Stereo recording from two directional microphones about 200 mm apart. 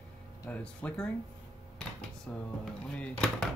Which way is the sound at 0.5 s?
5° left (ahead or behind).